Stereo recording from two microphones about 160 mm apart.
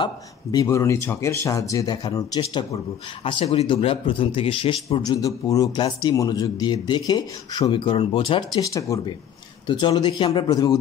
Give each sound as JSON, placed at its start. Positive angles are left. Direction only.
{"t": 0.0, "sound": "speech", "side_deg": 25}
{"t": 3.3, "sound": "speech", "side_deg": 35}